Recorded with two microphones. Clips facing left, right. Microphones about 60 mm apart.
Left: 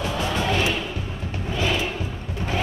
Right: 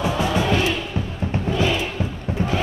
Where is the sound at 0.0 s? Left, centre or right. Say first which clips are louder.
Right 4 dB; centre.